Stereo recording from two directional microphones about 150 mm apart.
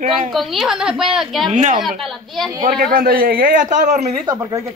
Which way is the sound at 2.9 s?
70° right (ahead or behind).